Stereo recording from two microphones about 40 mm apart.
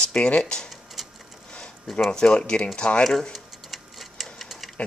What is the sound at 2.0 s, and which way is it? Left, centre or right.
Speech, centre.